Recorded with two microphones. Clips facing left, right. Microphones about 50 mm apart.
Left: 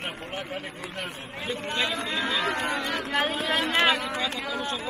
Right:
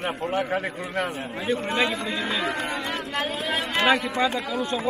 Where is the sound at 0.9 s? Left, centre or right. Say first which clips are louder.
Right 10 dB; right.